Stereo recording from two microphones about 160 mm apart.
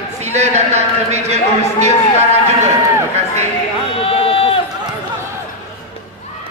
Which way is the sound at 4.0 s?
35° left (ahead or behind).